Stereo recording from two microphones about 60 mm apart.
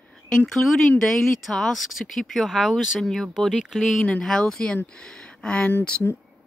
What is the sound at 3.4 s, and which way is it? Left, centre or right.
Speech, centre.